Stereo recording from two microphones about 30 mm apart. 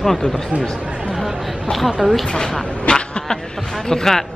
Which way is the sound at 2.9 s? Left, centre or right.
Left.